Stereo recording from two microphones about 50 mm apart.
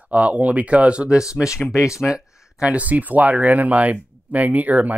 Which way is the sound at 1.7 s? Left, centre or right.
Left.